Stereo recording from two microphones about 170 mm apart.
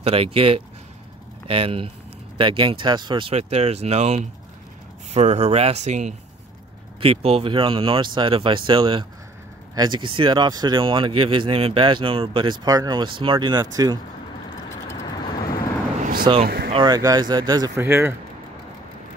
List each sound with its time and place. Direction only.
0.0 s speech: 35° right (ahead or behind)
16.0 s vehicle: 60° right (ahead or behind)
16.4 s a sound: 65° right (ahead or behind)
16.7 s speech: 25° right (ahead or behind)